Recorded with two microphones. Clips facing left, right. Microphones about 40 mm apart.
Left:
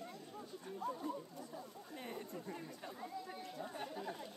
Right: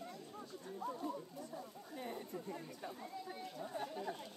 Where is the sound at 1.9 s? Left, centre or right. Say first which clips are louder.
Right 2 dB; left.